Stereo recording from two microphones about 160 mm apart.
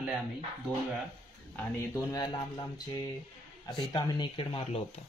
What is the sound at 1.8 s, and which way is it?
Speech, 25° left (ahead or behind).